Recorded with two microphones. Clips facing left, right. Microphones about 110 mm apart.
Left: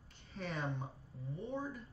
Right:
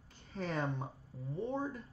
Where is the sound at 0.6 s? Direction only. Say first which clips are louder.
Right 2 dB; 35° right (ahead or behind).